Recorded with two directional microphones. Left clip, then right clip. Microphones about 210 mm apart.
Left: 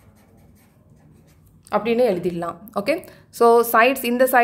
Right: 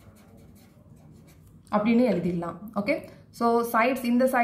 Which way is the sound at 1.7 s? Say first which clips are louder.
Left 5 dB; 50° left (ahead or behind).